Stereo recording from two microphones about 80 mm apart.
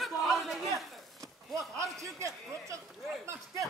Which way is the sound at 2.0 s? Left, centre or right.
Right.